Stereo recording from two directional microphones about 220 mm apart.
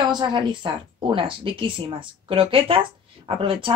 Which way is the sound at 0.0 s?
20° right (ahead or behind).